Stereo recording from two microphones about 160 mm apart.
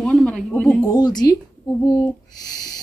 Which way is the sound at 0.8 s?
25° left (ahead or behind).